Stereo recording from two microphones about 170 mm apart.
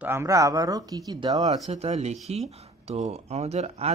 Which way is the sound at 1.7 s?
40° right (ahead or behind).